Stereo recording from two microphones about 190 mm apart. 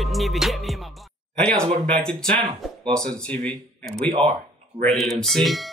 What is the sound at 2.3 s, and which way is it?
Speech, 25° right (ahead or behind).